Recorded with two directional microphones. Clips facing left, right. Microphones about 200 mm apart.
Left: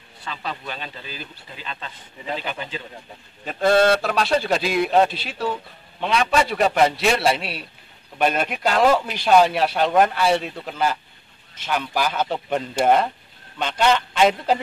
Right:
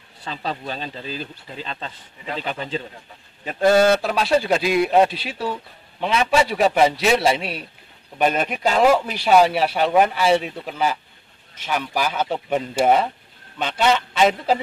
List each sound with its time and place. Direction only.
0.2 s speech: 35° right (ahead or behind)
3.4 s a man's voice: 5° right (ahead or behind)